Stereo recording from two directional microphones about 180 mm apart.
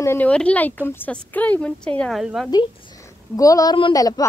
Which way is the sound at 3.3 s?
20° left (ahead or behind).